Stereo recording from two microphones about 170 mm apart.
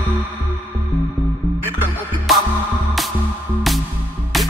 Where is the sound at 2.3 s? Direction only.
Centre (ahead or behind).